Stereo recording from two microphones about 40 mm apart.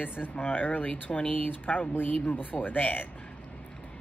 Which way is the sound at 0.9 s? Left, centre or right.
Left.